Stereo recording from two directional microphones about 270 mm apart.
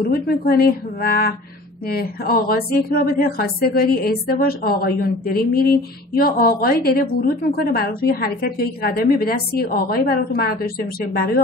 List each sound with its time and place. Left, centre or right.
0.0 s a woman's voice: left